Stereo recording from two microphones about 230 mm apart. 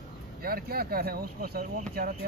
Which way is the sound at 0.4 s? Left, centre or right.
Right.